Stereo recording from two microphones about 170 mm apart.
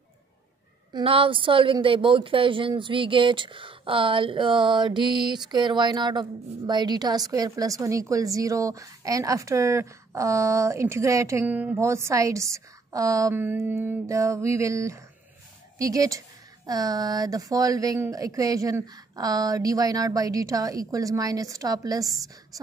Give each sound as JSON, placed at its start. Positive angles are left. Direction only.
{"t": 0.9, "sound": "a woman's voice", "side_deg": -30}